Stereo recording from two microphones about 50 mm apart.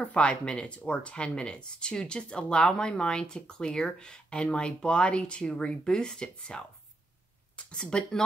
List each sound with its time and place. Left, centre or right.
0.0 s speech: left
7.7 s speech: centre